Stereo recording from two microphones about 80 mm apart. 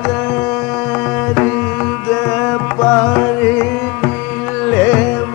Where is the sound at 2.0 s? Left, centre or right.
Left.